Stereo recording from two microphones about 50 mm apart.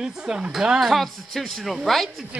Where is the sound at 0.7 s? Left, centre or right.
Centre.